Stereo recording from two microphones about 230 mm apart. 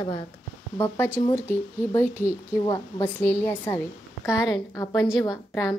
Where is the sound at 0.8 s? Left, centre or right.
Centre.